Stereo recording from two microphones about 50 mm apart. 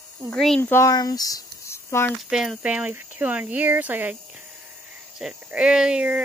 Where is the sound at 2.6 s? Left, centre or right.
Right.